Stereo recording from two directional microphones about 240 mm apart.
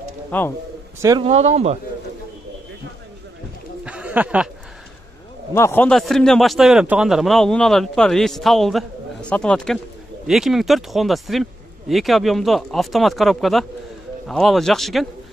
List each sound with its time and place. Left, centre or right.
0.3 s a man's voice: centre
1.0 s speech: right
3.8 s a sound: centre
5.5 s a man's voice: centre